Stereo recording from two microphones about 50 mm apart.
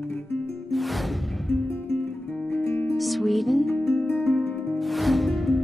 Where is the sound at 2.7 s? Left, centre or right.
Left.